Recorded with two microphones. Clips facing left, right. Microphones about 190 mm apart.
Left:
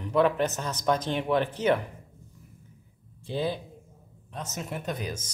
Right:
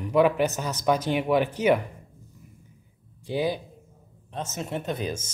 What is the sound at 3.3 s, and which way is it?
Speech, 10° right (ahead or behind).